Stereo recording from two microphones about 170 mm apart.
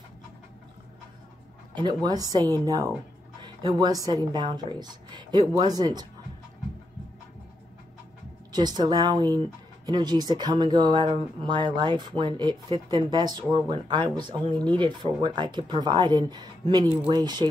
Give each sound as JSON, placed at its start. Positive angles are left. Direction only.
{"t": 1.7, "sound": "speech", "side_deg": -25}
{"t": 8.5, "sound": "speech", "side_deg": -25}